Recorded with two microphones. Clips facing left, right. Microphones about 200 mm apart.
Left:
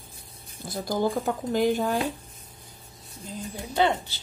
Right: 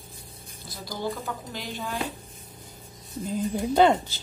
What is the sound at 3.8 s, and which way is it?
Speech, 45° right (ahead or behind).